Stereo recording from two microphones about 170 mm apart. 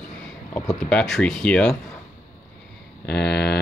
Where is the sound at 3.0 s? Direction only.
70° left (ahead or behind).